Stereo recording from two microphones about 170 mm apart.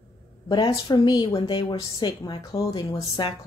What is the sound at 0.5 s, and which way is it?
Speech, 25° left (ahead or behind).